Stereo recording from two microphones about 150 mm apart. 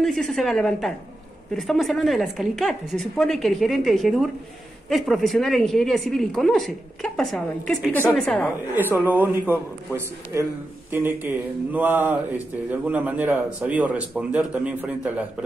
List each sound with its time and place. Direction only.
0.0 s speech: centre (ahead or behind)
8.9 s speech: 10° right (ahead or behind)